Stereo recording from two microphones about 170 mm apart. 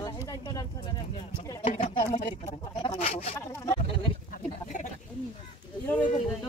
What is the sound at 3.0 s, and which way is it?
Speech, 40° left (ahead or behind).